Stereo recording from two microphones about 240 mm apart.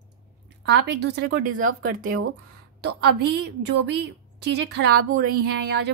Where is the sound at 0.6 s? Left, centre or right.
Right.